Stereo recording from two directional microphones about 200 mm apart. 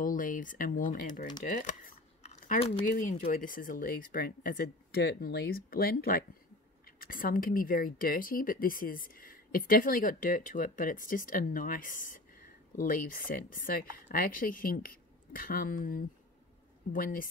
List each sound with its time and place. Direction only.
0.0 s speech: 40° left (ahead or behind)